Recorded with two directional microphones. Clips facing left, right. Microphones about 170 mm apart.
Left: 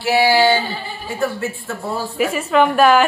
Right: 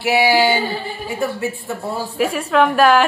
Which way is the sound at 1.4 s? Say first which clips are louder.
Right 1 dB; 20° right (ahead or behind).